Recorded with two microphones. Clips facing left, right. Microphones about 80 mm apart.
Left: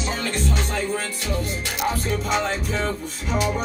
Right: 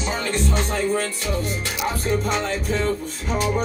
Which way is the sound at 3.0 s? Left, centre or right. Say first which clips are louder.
Even; right.